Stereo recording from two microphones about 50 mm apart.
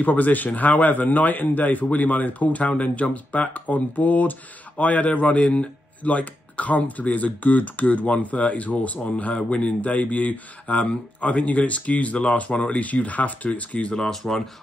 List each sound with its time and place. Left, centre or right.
0.0 s a man's voice: left; by 14.5 s centre